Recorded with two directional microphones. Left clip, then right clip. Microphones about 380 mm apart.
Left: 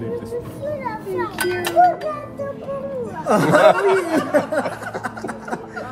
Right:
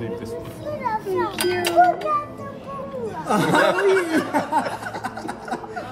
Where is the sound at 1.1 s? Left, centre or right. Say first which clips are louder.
Left 3 dB; centre.